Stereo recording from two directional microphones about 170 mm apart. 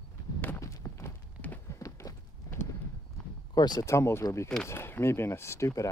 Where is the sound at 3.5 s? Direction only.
25° left (ahead or behind).